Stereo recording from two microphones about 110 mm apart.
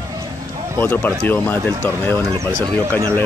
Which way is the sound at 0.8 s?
15° left (ahead or behind).